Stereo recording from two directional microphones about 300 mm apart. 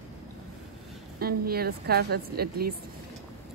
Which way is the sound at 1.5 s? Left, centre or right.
Right.